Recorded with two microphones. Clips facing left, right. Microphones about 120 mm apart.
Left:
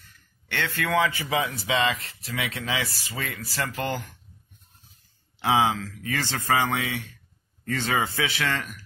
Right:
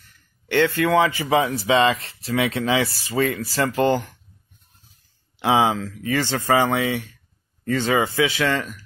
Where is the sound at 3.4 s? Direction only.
30° right (ahead or behind).